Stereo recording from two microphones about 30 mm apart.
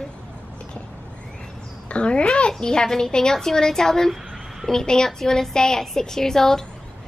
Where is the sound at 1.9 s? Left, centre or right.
Left.